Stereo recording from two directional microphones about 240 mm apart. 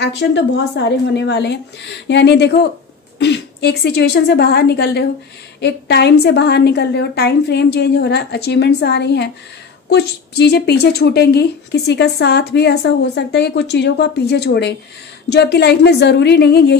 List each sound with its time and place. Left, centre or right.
0.0 s a woman's voice: left